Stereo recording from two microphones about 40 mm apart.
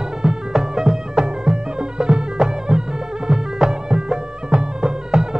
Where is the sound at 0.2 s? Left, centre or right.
Centre.